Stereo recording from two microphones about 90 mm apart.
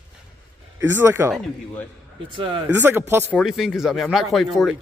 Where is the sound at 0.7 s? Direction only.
30° right (ahead or behind).